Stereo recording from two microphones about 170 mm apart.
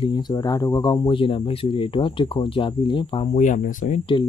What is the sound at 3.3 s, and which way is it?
Speech, 45° left (ahead or behind).